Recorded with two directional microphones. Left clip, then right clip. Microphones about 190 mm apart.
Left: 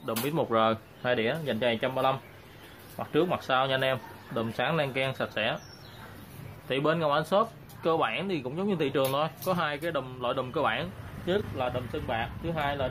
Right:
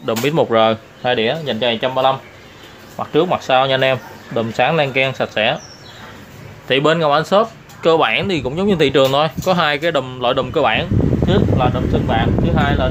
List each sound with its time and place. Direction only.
0.0 s speech: 20° right (ahead or behind)
6.7 s speech: 20° right (ahead or behind); by 12.7 s 5° right (ahead or behind)